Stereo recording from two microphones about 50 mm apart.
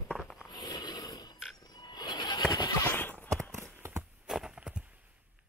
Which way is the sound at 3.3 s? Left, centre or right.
Right.